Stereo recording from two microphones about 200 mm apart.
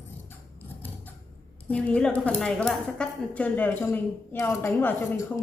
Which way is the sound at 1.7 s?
5° left (ahead or behind).